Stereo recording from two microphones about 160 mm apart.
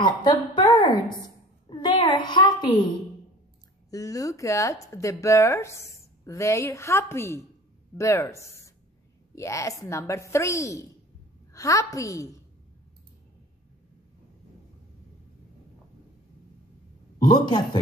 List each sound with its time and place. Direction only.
0.0 s a woman's voice: 25° left (ahead or behind)
3.9 s a woman's voice: 20° left (ahead or behind)
17.3 s a woman's voice: 25° left (ahead or behind)